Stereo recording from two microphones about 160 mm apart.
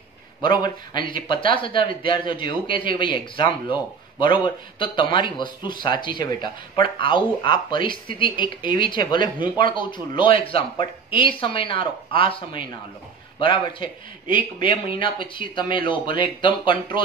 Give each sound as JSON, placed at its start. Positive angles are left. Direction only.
{"t": 0.4, "sound": "speech", "side_deg": 30}